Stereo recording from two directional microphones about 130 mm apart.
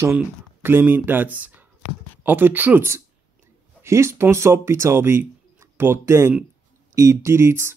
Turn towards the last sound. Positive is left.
turn(degrees=-20)  # may be behind; listen again after turning